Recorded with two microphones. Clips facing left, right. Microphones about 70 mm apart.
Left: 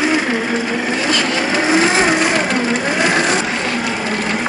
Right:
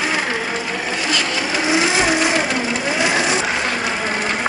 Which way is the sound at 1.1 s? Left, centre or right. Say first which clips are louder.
Left 3 dB; left.